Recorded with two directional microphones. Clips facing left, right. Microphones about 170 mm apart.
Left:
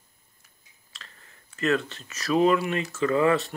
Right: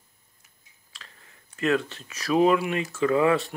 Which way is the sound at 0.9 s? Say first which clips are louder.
Even; 10° right (ahead or behind).